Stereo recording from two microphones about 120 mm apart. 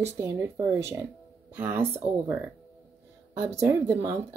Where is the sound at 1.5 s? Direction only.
20° right (ahead or behind).